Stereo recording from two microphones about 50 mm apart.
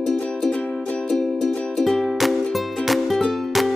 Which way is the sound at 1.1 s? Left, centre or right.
Centre.